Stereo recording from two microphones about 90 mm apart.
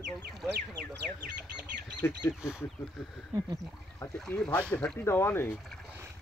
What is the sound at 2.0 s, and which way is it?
Speech, 30° left (ahead or behind).